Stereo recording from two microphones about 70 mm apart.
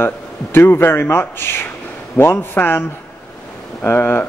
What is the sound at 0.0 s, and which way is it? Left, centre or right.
A man's voice, left.